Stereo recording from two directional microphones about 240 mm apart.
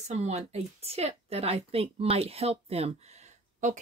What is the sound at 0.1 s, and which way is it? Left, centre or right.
A woman's voice, right.